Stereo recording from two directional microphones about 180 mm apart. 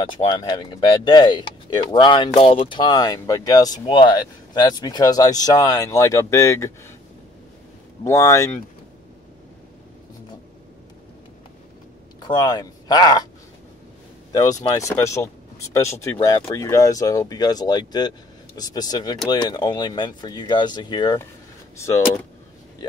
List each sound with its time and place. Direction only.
0.0 s speech: 25° left (ahead or behind)
8.0 s speech: 20° left (ahead or behind)
12.2 s speech: 25° left (ahead or behind)
14.3 s speech: 20° left (ahead or behind)